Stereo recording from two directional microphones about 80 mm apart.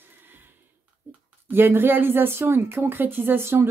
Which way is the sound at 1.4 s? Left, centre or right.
Right.